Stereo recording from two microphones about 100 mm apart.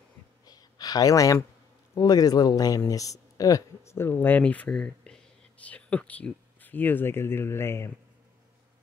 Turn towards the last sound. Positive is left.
turn(degrees=25)  # may be behind; listen again after turning